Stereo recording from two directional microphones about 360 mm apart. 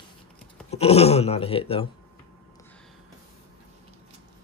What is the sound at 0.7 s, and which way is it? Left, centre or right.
Speech, centre.